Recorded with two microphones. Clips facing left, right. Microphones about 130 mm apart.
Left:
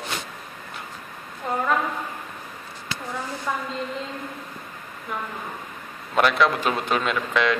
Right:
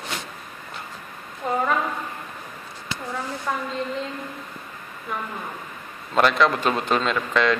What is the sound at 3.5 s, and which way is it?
Speech, centre (ahead or behind).